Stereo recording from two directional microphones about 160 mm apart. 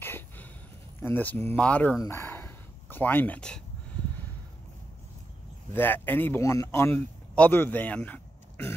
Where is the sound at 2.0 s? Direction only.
15° left (ahead or behind).